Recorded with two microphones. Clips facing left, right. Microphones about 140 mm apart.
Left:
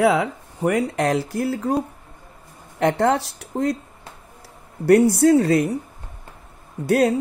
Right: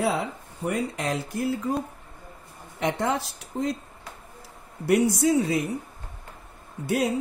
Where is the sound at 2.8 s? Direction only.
65° left (ahead or behind).